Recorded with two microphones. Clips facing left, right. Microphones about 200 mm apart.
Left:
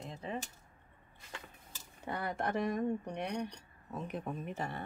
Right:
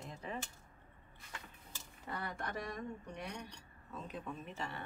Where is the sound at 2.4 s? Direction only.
65° left (ahead or behind).